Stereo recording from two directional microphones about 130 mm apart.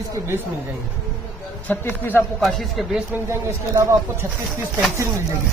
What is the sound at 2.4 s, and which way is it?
Speech, centre (ahead or behind).